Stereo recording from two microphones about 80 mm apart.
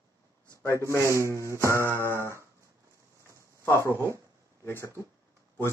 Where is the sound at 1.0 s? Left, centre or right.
Right.